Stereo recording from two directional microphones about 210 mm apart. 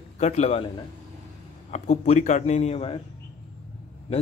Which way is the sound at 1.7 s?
30° left (ahead or behind).